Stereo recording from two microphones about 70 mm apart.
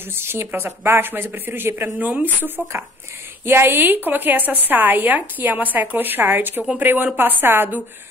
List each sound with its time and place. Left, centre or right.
0.1 s a woman's voice: right